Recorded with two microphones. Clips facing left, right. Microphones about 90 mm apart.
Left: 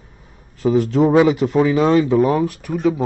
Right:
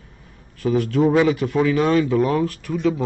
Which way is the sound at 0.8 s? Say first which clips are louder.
Left 3 dB; 25° left (ahead or behind).